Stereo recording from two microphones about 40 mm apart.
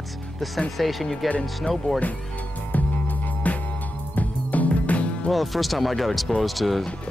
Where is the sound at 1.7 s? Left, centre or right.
Left.